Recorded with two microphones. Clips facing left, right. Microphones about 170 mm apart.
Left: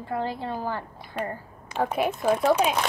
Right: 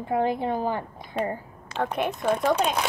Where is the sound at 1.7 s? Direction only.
5° left (ahead or behind).